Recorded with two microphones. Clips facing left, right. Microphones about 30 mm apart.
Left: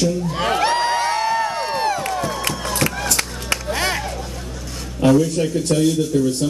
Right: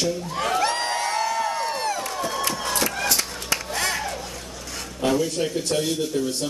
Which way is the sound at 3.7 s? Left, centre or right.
Left.